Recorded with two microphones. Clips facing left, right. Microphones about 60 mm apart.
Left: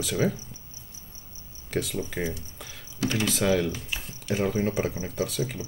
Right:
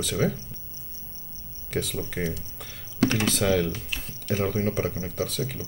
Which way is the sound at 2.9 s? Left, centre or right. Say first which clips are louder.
Right 4 dB; right.